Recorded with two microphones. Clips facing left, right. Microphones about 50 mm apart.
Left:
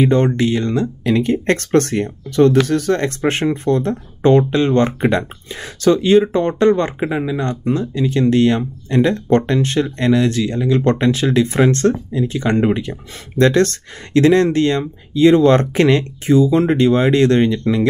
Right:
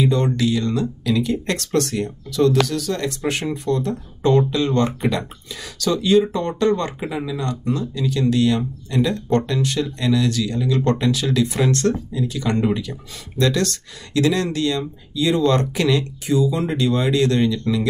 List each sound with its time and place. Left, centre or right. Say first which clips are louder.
0.1 s speech: left 4 dB; left